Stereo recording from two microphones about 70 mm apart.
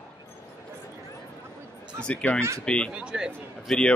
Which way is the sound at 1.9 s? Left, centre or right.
Centre.